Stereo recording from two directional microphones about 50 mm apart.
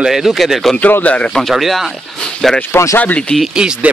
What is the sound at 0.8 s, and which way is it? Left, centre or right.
Speech, left.